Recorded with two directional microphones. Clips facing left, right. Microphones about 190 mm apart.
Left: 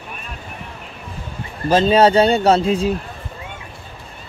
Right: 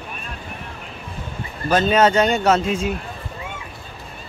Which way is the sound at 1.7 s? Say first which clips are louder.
Left 3 dB; 30° left (ahead or behind).